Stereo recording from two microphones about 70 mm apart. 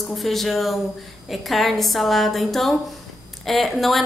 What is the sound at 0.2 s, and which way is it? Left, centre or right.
A woman's voice, centre.